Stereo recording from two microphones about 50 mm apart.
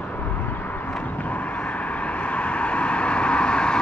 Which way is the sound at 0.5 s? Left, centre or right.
Left.